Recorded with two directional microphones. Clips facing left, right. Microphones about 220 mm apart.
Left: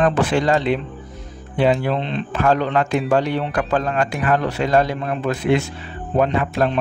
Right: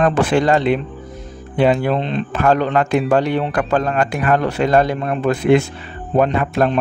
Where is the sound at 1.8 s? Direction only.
45° right (ahead or behind).